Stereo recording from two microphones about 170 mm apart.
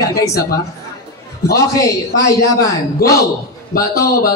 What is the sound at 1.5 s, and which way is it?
Speech, 20° left (ahead or behind).